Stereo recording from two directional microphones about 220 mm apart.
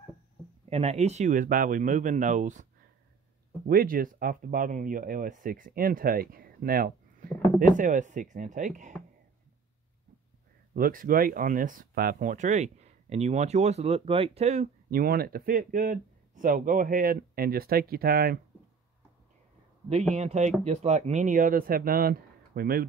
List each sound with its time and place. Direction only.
0.7 s speech: 30° right (ahead or behind)
3.6 s speech: 40° right (ahead or behind)
10.7 s speech: 40° right (ahead or behind)
20.2 s speech: 30° right (ahead or behind)